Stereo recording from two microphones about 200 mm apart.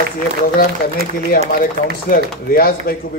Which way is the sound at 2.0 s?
45° left (ahead or behind).